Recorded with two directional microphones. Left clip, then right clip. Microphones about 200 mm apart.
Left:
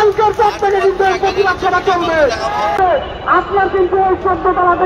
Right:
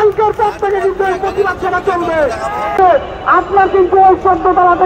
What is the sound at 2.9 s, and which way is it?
Speech, 40° right (ahead or behind).